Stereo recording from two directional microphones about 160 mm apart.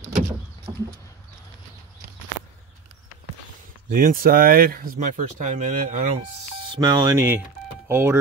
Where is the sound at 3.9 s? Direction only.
60° right (ahead or behind).